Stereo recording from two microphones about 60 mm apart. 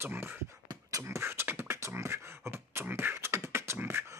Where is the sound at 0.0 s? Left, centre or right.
Right.